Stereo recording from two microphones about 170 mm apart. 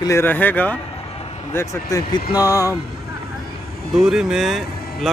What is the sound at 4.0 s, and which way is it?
Speech, 5° right (ahead or behind).